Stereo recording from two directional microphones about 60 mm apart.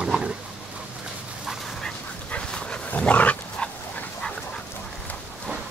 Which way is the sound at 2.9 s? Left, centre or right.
Left.